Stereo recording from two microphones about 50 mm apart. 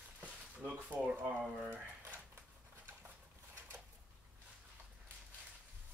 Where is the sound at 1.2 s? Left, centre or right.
Right.